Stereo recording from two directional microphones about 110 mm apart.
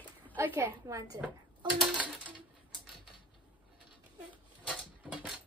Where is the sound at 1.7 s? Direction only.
10° right (ahead or behind).